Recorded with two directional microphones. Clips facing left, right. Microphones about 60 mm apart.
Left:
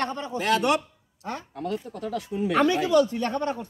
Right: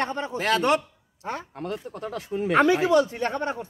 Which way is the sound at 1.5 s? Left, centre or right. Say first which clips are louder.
Left 1 dB; right.